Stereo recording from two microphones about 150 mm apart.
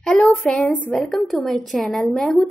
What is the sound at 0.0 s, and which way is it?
A woman's voice, 5° left (ahead or behind).